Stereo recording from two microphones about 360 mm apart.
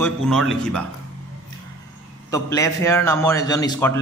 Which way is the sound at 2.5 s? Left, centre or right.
Centre.